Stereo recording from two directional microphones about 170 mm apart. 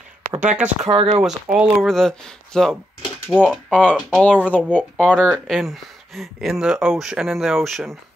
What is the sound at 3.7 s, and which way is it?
Speech, 10° left (ahead or behind).